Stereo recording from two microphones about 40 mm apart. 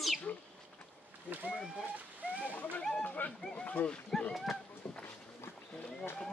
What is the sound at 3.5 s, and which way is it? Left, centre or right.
Speech, left.